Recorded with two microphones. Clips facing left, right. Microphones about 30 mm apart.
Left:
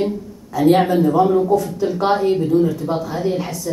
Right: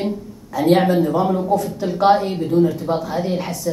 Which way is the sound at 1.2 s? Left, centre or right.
Centre.